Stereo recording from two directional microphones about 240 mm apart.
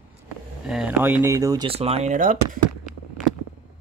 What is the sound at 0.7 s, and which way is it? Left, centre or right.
Speech, centre.